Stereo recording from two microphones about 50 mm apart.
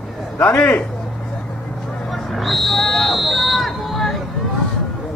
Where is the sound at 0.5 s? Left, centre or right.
Left.